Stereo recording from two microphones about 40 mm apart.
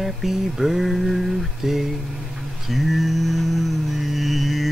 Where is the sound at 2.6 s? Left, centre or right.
Centre.